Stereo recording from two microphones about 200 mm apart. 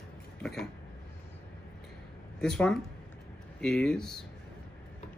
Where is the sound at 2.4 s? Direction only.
5° left (ahead or behind).